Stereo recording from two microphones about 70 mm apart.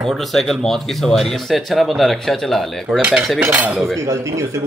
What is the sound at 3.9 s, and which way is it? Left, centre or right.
Speech, right.